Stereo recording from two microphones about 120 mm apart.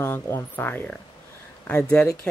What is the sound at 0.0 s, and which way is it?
Speech, 20° left (ahead or behind).